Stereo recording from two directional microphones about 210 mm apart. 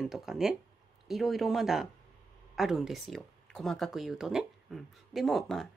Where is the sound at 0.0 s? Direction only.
Centre (ahead or behind).